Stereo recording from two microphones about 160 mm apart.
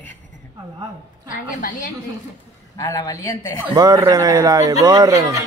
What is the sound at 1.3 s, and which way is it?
Speech, 60° left (ahead or behind).